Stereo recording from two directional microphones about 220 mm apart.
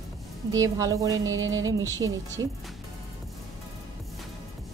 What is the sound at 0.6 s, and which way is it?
Speech, 15° right (ahead or behind).